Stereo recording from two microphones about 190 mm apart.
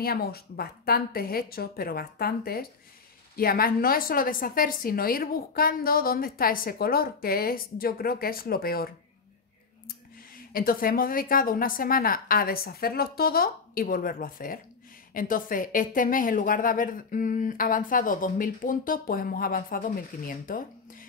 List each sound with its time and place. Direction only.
0.0 s a woman's voice: 55° left (ahead or behind)
10.3 s a woman's voice: 50° left (ahead or behind)